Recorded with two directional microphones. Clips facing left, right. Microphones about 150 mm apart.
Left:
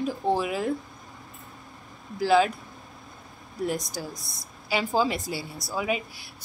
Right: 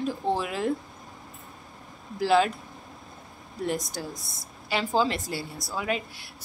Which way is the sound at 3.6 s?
Centre (ahead or behind).